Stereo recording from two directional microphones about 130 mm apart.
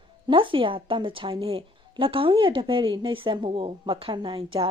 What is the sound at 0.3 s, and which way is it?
A woman's voice, 40° right (ahead or behind).